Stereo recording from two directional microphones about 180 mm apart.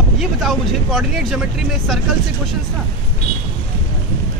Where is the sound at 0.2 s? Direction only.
Centre (ahead or behind).